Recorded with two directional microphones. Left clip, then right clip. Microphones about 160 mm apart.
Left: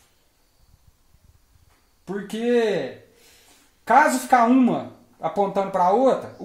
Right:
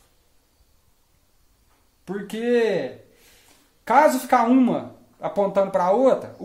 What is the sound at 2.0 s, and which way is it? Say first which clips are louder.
Speech: left 1 dB; 30° left (ahead or behind).